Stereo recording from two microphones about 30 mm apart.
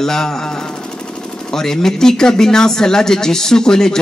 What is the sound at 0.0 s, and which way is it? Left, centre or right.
Speech, centre.